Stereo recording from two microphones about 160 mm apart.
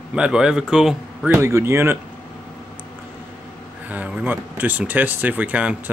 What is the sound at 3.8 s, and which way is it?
Speech, 10° right (ahead or behind).